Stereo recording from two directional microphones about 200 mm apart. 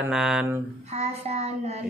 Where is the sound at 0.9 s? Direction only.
30° right (ahead or behind).